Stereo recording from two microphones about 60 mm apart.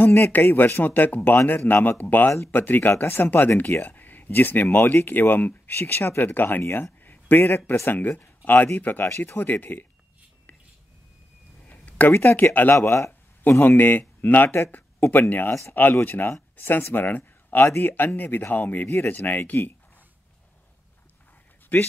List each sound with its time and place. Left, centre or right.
0.3 s speech: left
8.7 s speech: left
11.6 s a sound: left
12.1 s speech: left
12.8 s speech: left
13.4 s speech: left
17.6 s speech: left
17.9 s speech: left
21.7 s speech: left